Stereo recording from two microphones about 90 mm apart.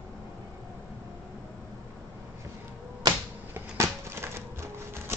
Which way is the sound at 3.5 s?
30° right (ahead or behind).